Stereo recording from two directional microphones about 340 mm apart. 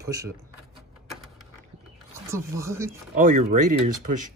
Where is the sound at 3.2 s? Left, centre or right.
Right.